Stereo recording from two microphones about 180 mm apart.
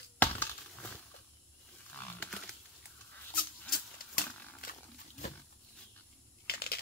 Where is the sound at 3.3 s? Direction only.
55° left (ahead or behind).